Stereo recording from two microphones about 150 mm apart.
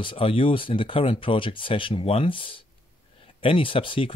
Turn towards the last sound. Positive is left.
turn(degrees=35)  # may be behind; listen again after turning